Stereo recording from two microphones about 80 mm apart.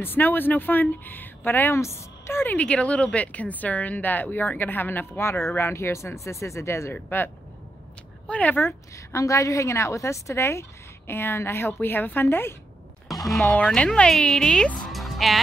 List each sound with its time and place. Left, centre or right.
0.0 s speech: left
2.5 s speech: centre
8.3 s speech: centre
8.9 s speech: left
13.1 s speech: centre
13.7 s speech: centre
14.9 s music: centre